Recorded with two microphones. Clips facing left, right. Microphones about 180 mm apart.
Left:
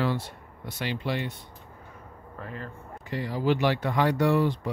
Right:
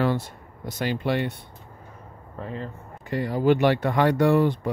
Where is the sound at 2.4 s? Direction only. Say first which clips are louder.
Right 5 dB; 25° right (ahead or behind).